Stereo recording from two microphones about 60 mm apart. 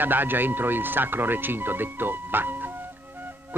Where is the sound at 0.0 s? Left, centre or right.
Right.